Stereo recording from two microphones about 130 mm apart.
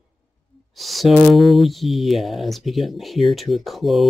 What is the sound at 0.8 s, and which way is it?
Speech, centre (ahead or behind).